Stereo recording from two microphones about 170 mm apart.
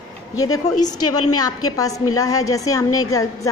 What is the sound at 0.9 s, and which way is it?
A woman's voice, 20° left (ahead or behind).